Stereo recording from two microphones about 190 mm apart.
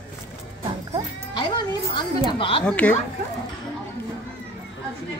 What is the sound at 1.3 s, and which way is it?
Music, 25° left (ahead or behind).